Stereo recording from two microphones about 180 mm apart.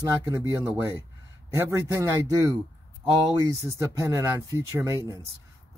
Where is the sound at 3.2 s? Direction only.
20° right (ahead or behind).